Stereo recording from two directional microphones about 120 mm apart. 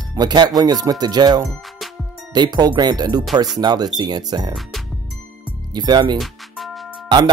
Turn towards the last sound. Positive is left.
turn(degrees=-40)  # may be behind; listen again after turning